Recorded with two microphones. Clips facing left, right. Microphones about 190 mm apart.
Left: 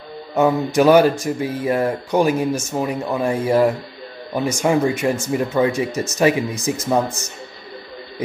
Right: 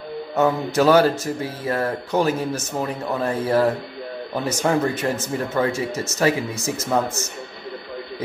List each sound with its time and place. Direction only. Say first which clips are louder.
0.3 s speech: left 3 dB; 15° left (ahead or behind)